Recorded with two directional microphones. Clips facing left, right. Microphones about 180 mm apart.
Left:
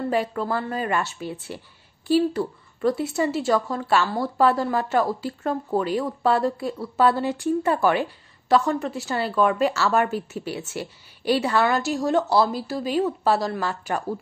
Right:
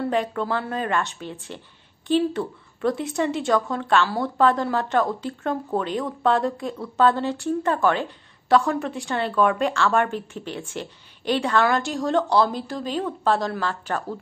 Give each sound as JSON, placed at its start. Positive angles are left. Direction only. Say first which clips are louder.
{"t": 0.1, "sound": "a woman's voice", "louder": "even", "side_deg": 5}